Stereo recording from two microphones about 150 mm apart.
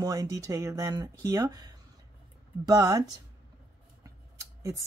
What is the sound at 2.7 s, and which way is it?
Speech, 25° right (ahead or behind).